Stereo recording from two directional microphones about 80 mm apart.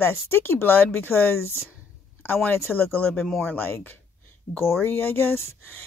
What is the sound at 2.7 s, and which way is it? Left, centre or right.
Speech, left.